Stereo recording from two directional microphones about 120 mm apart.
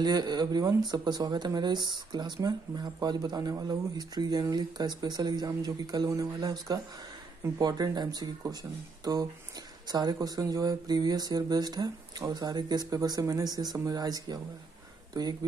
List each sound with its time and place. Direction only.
0.0 s speech: 35° right (ahead or behind)
9.8 s speech: 35° right (ahead or behind)